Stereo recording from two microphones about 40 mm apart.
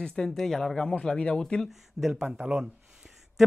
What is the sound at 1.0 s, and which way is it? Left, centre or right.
Speech, left.